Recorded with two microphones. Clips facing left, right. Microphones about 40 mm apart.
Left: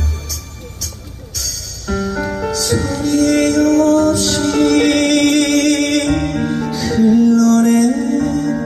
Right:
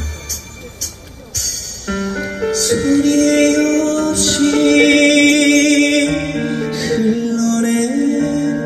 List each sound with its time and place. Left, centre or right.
1.3 s music: right
2.1 s music: right
2.5 s music: right